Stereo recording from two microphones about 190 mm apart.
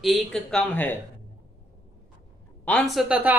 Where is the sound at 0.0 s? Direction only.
Centre (ahead or behind).